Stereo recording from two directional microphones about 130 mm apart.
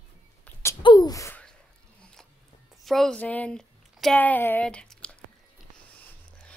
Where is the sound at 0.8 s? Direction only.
35° left (ahead or behind).